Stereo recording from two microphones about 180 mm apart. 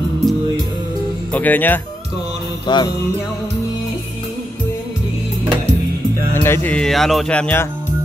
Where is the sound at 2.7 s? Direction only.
25° left (ahead or behind).